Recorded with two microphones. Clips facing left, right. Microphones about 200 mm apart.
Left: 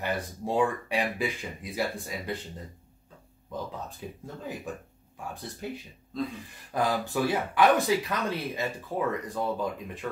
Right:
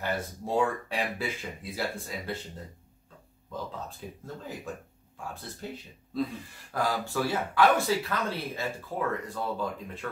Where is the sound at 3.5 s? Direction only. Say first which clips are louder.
Left 1 dB; 15° left (ahead or behind).